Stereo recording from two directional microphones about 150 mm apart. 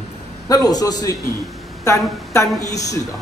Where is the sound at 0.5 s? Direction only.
25° left (ahead or behind).